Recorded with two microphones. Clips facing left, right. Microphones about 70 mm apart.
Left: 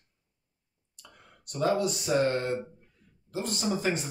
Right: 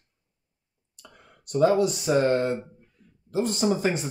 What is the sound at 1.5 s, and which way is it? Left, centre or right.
Speech, right.